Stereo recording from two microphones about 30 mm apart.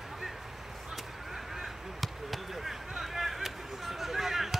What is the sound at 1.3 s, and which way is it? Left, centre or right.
Honk, centre.